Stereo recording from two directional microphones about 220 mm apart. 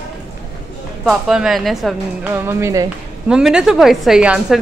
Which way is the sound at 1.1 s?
5° right (ahead or behind).